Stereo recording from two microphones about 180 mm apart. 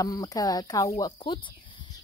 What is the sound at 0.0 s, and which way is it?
A woman's voice, 20° left (ahead or behind).